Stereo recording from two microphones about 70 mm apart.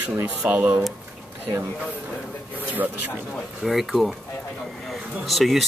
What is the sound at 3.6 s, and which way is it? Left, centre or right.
Speech, centre.